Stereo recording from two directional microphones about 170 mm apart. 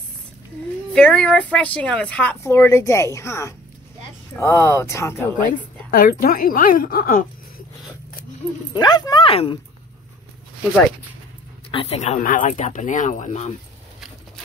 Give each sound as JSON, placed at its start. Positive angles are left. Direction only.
{"t": 0.9, "sound": "speech", "side_deg": 5}
{"t": 5.9, "sound": "a woman's voice", "side_deg": 60}
{"t": 8.7, "sound": "speech", "side_deg": 25}
{"t": 11.7, "sound": "speech", "side_deg": 35}